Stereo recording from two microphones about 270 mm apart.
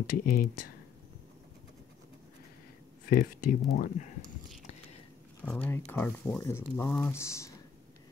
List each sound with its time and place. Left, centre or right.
0.2 s speech: left
3.1 s speech: left
5.4 s speech: centre